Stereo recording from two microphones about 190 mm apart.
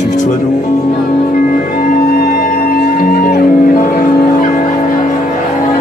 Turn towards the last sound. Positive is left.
turn(degrees=45)  # may be behind; listen again after turning